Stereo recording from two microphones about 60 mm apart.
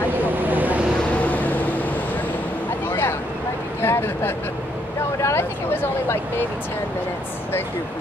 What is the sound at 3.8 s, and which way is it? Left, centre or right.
Speech, left.